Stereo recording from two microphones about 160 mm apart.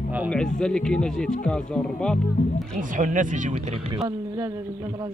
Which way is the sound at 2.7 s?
50° right (ahead or behind).